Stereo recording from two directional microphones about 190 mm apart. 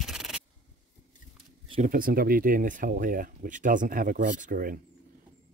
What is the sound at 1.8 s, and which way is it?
Speech, 50° right (ahead or behind).